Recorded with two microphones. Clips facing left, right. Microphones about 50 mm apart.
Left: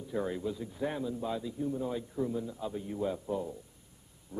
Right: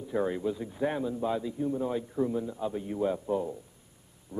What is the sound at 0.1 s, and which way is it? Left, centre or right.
A man's voice, centre.